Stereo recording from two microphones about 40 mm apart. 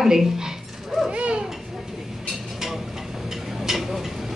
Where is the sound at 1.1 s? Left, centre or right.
Right.